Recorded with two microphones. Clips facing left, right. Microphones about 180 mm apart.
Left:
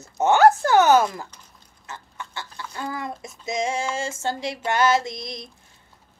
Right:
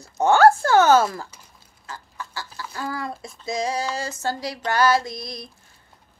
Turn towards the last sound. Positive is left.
turn(degrees=20)  # may be behind; listen again after turning